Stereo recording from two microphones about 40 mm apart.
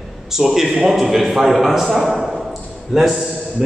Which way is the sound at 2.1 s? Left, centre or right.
Centre.